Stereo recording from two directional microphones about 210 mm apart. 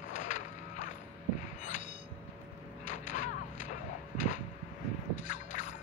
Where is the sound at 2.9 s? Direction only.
35° left (ahead or behind).